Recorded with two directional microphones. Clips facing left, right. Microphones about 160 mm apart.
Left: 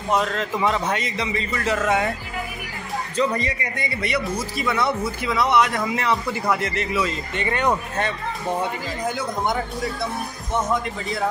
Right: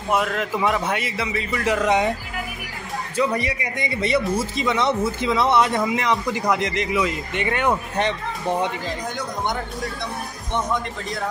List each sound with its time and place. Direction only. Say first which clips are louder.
0.1 s a man's voice: even; 10° right (ahead or behind)
3.2 s a man's voice: right 1 dB; 10° right (ahead or behind); by 5.8 s 30° right (ahead or behind)
5.9 s a man's voice: right 1 dB; 15° right (ahead or behind)